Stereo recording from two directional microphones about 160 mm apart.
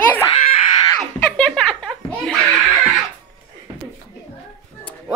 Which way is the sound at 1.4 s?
5° left (ahead or behind).